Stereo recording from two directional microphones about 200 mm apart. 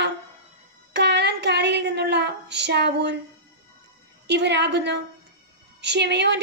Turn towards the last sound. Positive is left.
turn(degrees=-60)  # may be behind; listen again after turning